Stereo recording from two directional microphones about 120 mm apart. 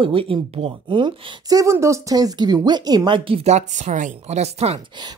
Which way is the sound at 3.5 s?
90° right.